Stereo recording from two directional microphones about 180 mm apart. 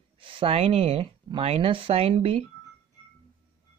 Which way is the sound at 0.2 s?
30° right (ahead or behind).